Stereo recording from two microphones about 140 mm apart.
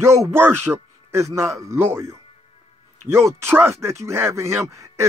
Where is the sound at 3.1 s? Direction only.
20° right (ahead or behind).